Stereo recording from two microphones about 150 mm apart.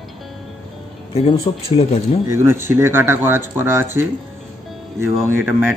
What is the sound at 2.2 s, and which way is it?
Speech, 15° right (ahead or behind).